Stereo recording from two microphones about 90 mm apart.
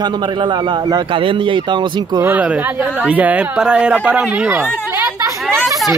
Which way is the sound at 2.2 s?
20° right (ahead or behind).